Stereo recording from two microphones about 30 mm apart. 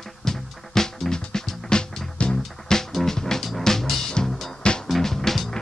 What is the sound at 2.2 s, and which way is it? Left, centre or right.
Music, left.